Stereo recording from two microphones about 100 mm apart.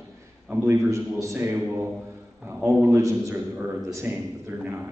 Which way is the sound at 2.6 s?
25° right (ahead or behind).